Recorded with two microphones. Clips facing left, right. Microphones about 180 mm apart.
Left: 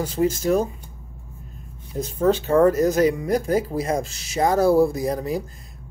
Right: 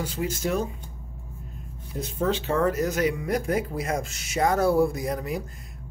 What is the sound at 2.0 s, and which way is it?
Speech, 40° left (ahead or behind).